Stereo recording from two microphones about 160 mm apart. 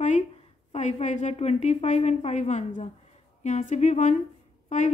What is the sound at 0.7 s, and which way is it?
A woman's voice, 45° left (ahead or behind).